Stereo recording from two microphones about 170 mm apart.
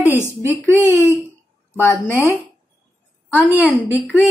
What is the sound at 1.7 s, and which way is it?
A woman's voice, 15° left (ahead or behind).